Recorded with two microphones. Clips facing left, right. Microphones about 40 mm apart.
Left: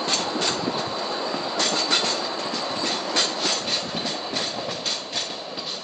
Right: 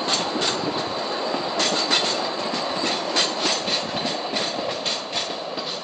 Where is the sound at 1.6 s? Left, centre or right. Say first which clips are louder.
Even; right.